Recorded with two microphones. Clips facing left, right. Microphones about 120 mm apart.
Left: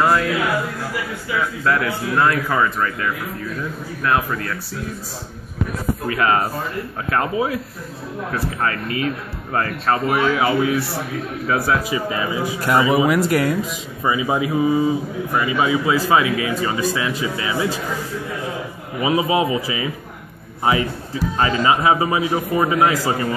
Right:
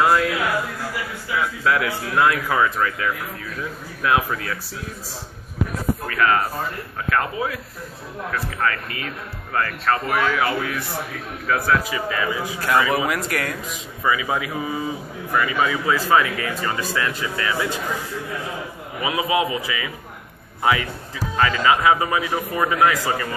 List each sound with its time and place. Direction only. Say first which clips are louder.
1.6 s speech: left 1 dB; 5° right (ahead or behind)
6.0 s a man's voice: left 2 dB; 25° left (ahead or behind)
19.0 s speech: left 3 dB; 30° left (ahead or behind)